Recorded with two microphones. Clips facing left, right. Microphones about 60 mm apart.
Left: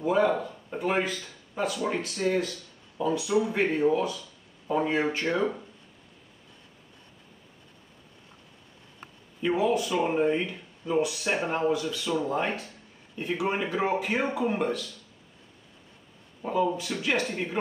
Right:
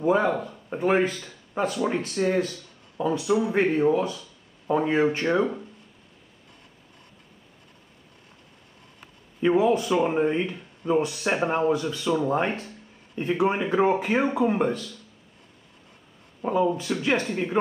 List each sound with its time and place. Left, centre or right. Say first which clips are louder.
0.0 s a sound: right 2 dB; right
0.7 s speech: right 6 dB; right
9.4 s speech: right 4 dB; right
16.4 s speech: right 3 dB; right